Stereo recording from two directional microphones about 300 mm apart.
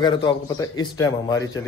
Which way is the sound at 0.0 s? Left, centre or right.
Centre.